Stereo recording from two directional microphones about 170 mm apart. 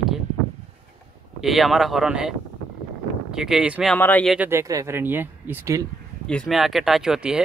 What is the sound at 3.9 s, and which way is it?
Speech, 10° left (ahead or behind).